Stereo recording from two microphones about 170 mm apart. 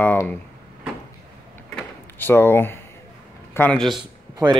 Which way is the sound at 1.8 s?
10° left (ahead or behind).